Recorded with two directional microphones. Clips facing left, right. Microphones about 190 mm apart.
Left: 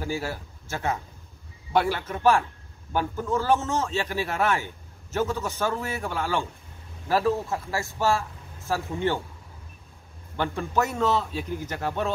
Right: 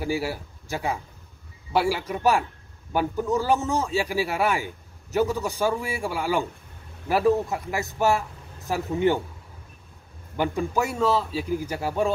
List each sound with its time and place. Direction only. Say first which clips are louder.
0.0 s a man's voice: right 3 dB; 10° right (ahead or behind)
10.3 s a man's voice: right 2 dB; 10° right (ahead or behind)